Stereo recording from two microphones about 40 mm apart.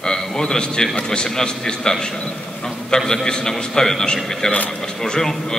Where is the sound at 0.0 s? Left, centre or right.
Centre.